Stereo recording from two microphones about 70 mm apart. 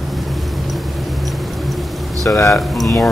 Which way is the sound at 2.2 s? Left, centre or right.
Left.